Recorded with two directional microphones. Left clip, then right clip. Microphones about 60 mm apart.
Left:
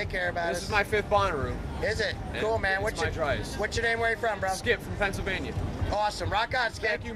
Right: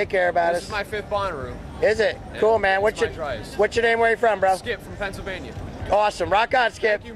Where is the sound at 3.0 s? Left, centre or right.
Left.